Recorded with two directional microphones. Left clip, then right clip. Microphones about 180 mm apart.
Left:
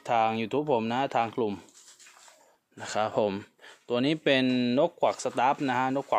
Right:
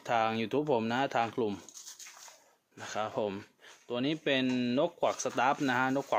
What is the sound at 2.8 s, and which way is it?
Speech, 60° left (ahead or behind).